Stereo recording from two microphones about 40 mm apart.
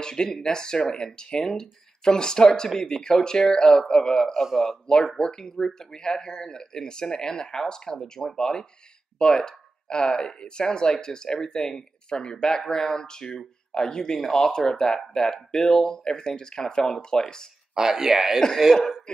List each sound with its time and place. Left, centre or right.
0.0 s speech: centre
4.3 s speech: centre
4.8 s speech: centre
17.7 s speech: centre
19.1 s speech: left